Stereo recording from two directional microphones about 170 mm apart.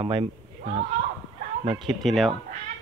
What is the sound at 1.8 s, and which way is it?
Speech, centre (ahead or behind).